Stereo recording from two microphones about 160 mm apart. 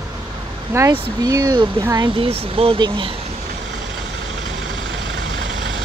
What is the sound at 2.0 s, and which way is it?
Speech, 35° right (ahead or behind).